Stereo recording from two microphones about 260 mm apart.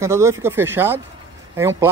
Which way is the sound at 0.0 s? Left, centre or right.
Centre.